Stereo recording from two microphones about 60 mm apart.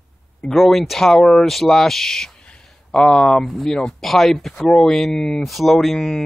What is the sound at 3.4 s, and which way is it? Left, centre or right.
Speech, centre.